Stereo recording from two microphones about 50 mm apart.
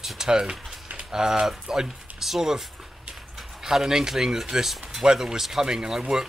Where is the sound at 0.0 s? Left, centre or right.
Centre.